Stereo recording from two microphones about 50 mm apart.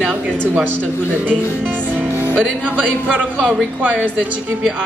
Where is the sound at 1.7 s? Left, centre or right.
Right.